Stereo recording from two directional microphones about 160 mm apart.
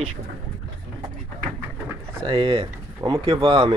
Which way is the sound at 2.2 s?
35° right (ahead or behind).